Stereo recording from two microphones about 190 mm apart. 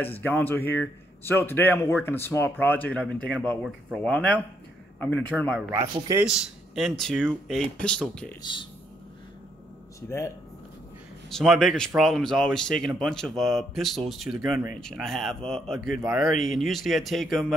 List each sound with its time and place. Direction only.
0.0 s a man's voice: 10° left (ahead or behind)
5.7 s speech: 15° right (ahead or behind)
6.2 s speech: centre (ahead or behind)
8.4 s speech: 25° left (ahead or behind)
10.0 s a man's voice: 15° left (ahead or behind)
11.2 s speech: centre (ahead or behind)